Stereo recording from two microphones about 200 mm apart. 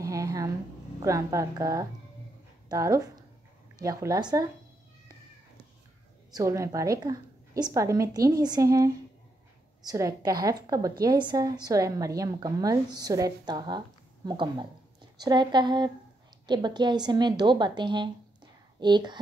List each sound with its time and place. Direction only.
0.0 s a sound: 15° right (ahead or behind)
1.0 s a woman's voice: 15° right (ahead or behind)
6.3 s a woman's voice: 15° right (ahead or behind)